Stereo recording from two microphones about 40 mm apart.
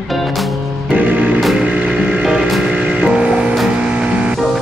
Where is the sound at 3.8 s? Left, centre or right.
Right.